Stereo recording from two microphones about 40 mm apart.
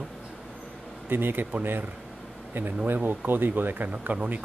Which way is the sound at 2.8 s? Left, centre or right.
Right.